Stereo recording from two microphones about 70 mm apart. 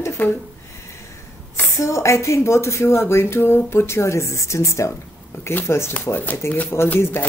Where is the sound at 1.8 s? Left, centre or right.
Left.